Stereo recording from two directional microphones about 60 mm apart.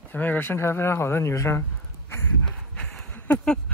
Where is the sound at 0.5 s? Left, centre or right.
Left.